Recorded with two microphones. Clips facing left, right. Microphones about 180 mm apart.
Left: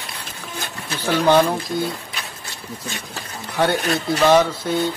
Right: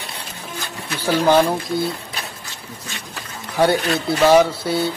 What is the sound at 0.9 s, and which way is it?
Speech, 10° right (ahead or behind).